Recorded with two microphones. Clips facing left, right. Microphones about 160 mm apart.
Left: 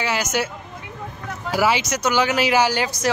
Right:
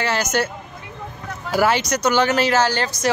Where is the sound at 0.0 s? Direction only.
5° left (ahead or behind).